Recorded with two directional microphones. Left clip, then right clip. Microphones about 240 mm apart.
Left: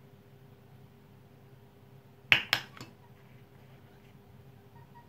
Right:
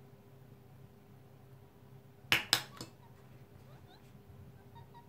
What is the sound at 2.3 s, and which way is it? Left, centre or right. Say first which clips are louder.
Finger snapping: left 5 dB; left.